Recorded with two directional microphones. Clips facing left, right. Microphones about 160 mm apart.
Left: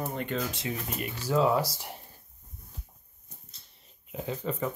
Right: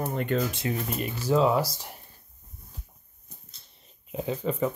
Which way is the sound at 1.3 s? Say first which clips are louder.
Right 3 dB; 20° right (ahead or behind).